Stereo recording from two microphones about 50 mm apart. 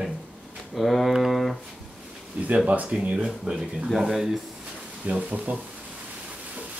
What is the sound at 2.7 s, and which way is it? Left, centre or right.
Speech, right.